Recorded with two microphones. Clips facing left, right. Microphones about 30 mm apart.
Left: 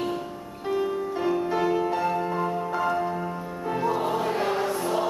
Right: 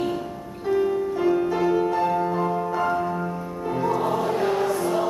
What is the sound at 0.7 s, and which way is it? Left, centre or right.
Music, centre.